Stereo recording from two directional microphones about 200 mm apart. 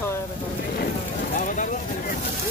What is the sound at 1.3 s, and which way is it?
Speech, 40° left (ahead or behind).